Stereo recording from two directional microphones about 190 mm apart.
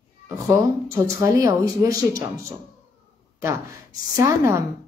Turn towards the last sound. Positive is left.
turn(degrees=-15)  # may be behind; listen again after turning